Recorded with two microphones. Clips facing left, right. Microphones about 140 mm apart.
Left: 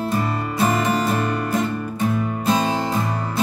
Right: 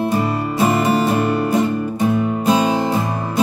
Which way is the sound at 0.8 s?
15° right (ahead or behind).